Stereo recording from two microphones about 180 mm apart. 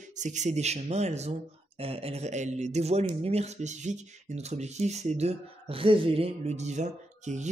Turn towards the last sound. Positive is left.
turn(degrees=-40)  # may be behind; listen again after turning